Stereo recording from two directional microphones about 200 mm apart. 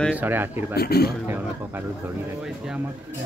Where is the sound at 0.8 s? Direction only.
50° left (ahead or behind).